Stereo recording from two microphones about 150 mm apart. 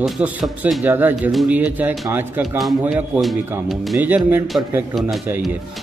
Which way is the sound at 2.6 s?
Centre (ahead or behind).